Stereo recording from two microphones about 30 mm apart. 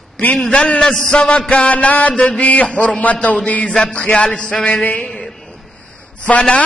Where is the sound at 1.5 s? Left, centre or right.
Left.